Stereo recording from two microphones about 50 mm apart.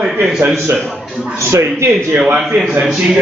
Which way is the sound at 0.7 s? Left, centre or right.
Right.